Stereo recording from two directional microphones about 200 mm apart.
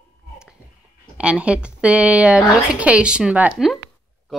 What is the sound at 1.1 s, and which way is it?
Speech, 5° right (ahead or behind).